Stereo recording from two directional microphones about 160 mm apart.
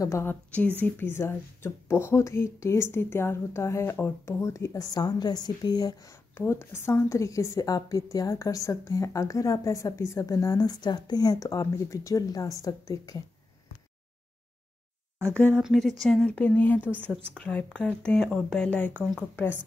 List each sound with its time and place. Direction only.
0.0 s a woman's voice: 15° left (ahead or behind)
15.3 s a woman's voice: 10° left (ahead or behind)